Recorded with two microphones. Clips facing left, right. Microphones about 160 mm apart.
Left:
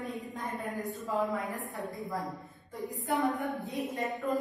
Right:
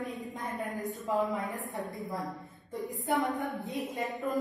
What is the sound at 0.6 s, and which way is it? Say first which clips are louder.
Speech: right 1 dB; 20° right (ahead or behind).